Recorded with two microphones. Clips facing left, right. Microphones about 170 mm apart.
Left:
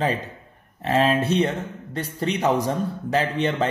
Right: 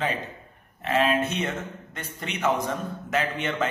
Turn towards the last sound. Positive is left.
turn(degrees=35)  # may be behind; listen again after turning